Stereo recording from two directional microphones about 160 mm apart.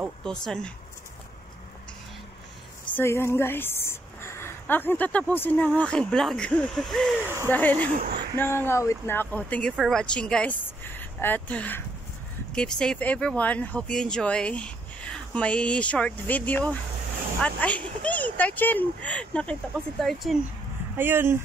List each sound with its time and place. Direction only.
0.2 s speech: 5° left (ahead or behind)
2.9 s a woman's voice: 15° left (ahead or behind)
7.2 s speech: 15° right (ahead or behind)
7.5 s speech: 10° left (ahead or behind)
20.9 s speech: 15° right (ahead or behind)